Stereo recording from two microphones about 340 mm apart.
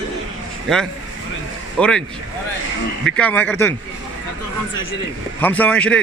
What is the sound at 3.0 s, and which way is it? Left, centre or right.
Speech, centre.